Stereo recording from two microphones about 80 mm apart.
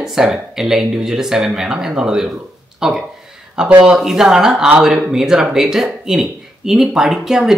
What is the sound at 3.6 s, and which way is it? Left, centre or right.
Speech, centre.